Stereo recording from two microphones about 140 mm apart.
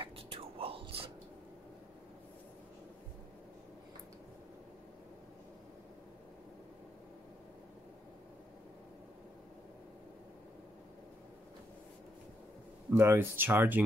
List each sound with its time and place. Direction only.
0.0 s whispering: 40° right (ahead or behind)
12.9 s speech: 20° right (ahead or behind)